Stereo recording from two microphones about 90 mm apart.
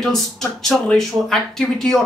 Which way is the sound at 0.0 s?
5° left (ahead or behind).